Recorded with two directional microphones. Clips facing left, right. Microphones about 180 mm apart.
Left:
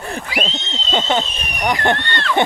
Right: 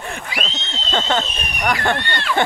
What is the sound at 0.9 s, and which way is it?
Speech, 15° left (ahead or behind).